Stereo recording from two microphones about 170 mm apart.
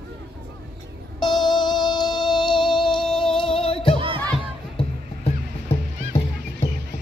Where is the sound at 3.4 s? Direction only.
30° left (ahead or behind).